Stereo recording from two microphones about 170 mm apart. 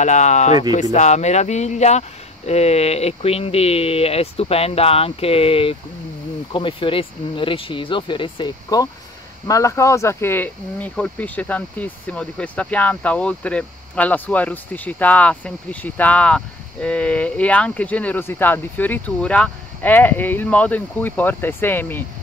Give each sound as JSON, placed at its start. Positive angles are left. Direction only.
{"t": 0.0, "sound": "speech", "side_deg": 45}